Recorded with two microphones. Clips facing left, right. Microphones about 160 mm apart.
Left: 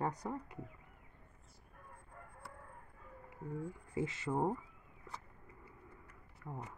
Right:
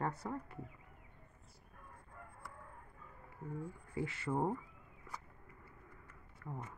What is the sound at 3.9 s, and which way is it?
Speech, 20° left (ahead or behind).